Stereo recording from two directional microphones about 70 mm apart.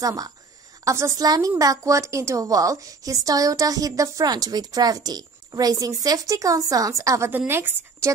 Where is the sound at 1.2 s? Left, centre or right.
Right.